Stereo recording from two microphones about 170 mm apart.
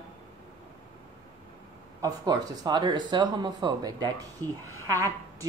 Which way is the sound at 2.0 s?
20° right (ahead or behind).